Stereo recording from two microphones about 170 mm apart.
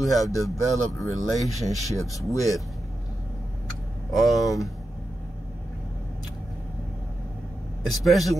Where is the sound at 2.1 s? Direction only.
20° left (ahead or behind).